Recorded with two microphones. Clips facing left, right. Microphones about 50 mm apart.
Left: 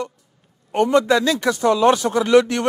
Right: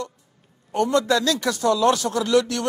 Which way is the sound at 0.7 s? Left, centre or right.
Left.